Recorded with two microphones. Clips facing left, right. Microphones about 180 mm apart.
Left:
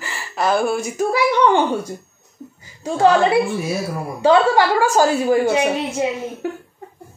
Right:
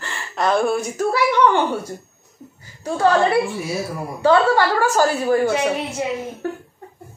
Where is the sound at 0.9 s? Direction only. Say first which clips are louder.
Left 2 dB; 15° left (ahead or behind).